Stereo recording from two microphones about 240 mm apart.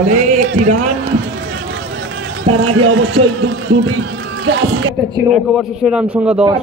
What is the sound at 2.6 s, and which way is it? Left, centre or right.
A man's voice, right.